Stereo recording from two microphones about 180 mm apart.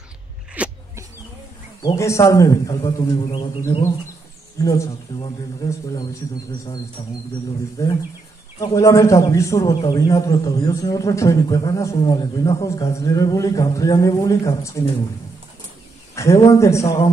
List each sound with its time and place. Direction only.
0.6 s a sound: 10° right (ahead or behind)
1.8 s a man's voice: 20° left (ahead or behind)
2.8 s a man's voice: 30° left (ahead or behind)
4.6 s a man's voice: 20° left (ahead or behind)
8.5 s a man's voice: 15° left (ahead or behind)
16.2 s a man's voice: 15° left (ahead or behind)